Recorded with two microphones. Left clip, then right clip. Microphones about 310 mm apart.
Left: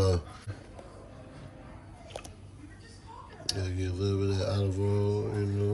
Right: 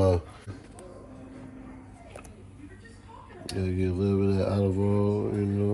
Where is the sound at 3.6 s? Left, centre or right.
Centre.